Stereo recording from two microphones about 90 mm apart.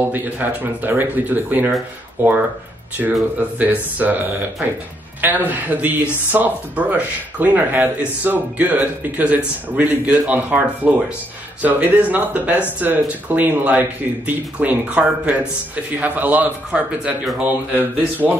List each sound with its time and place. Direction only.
0.0 s speech: 20° right (ahead or behind)
5.2 s speech: 20° right (ahead or behind)